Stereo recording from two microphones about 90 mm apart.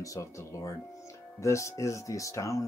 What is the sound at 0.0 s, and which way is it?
Speech, 35° left (ahead or behind).